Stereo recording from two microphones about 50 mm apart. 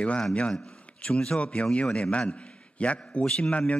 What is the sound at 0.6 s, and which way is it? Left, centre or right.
A man's voice, left.